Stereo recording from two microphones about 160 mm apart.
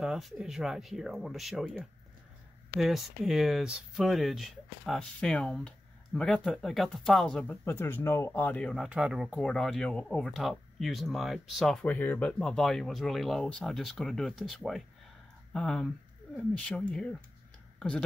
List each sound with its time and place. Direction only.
0.0 s speech: 5° right (ahead or behind)
8.8 s speech: 5° right (ahead or behind)
9.3 s speech: 5° left (ahead or behind)